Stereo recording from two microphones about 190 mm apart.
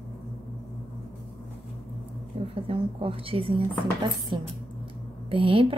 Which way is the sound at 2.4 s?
30° right (ahead or behind).